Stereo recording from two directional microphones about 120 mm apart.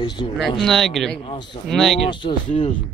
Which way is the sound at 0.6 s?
5° left (ahead or behind).